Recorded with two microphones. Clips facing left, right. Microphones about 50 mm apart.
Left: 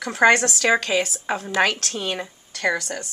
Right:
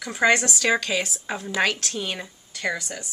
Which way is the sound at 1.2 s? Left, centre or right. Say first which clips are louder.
Left 5 dB; left.